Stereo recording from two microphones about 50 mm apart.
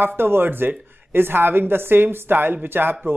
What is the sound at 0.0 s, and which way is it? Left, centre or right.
A woman's voice, right.